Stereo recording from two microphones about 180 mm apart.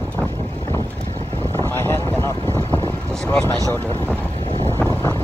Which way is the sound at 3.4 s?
20° left (ahead or behind).